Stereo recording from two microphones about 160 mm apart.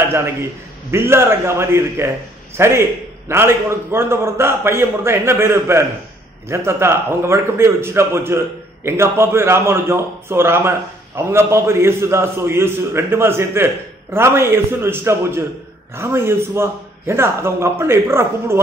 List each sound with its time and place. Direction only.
0.9 s a man's voice: 15° right (ahead or behind)